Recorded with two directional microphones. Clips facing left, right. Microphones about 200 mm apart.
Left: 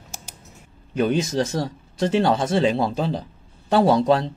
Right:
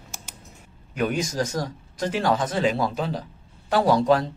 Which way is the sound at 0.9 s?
25° left (ahead or behind).